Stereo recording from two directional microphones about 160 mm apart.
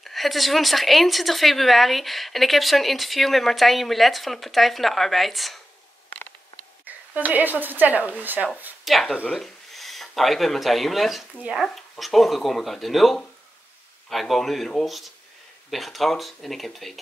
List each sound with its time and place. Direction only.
0.0 s a woman's voice: centre (ahead or behind)
6.8 s speech: 10° right (ahead or behind)
8.8 s a woman's voice: centre (ahead or behind)